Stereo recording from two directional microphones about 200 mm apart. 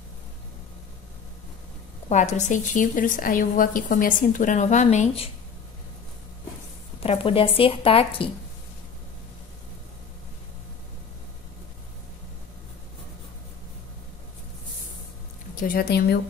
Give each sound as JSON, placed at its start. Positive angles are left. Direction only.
{"t": 2.0, "sound": "a woman's voice", "side_deg": 35}
{"t": 7.0, "sound": "speech", "side_deg": 30}
{"t": 15.5, "sound": "a woman's voice", "side_deg": 45}